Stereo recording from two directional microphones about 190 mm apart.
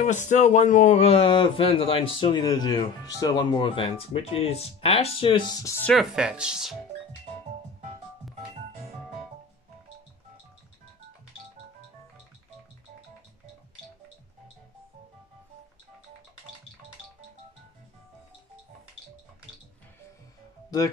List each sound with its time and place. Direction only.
0.0 s a man's voice: 40° left (ahead or behind); by 6.0 s 10° left (ahead or behind)
6.1 s speech: 5° right (ahead or behind)